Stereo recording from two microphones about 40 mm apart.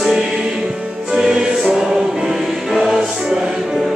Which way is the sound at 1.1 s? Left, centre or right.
Centre.